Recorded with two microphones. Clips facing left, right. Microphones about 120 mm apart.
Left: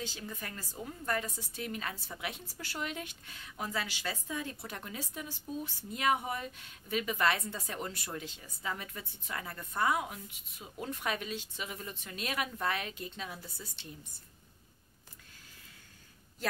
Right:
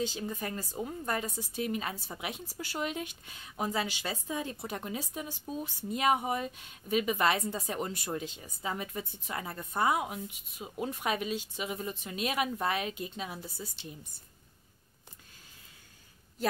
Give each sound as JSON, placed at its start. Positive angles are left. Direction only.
{"t": 0.0, "sound": "speech", "side_deg": -20}